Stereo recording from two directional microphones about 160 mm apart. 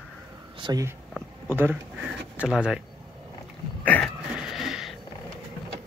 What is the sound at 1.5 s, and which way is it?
Speech, 10° right (ahead or behind).